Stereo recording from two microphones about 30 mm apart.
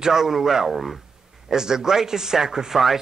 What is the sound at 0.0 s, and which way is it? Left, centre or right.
Speech, centre.